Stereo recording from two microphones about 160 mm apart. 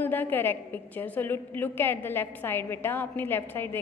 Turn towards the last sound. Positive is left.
turn(degrees=15)  # may be behind; listen again after turning